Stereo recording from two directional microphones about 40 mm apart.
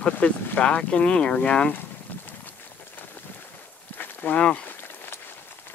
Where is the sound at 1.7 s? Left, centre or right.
Left.